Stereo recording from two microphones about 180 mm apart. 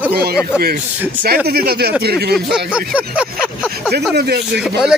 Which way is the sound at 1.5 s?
60° right (ahead or behind).